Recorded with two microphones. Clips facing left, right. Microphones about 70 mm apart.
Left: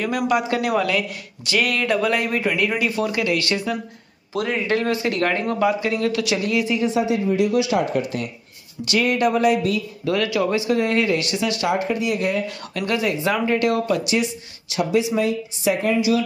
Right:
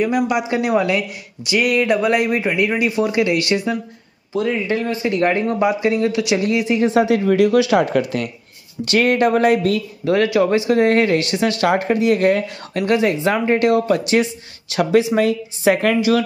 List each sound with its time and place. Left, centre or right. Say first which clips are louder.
0.3 s speech: right 2 dB; centre
4.6 s speech: right 1 dB; centre
5.2 s speech: right 4 dB; right
6.8 s speech: right 5 dB; right
8.8 s speech: right 4 dB; right
10.0 s speech: right 5 dB; right
12.8 s speech: right 5 dB; right
14.7 s speech: right 5 dB; right